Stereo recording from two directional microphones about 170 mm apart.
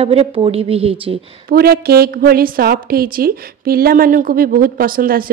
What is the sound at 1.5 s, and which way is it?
A woman's voice, 65° right (ahead or behind).